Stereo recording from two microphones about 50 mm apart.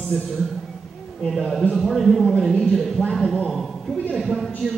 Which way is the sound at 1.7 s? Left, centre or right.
Centre.